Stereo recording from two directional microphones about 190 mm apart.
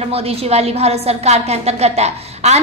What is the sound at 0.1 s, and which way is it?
A woman's voice, 30° right (ahead or behind).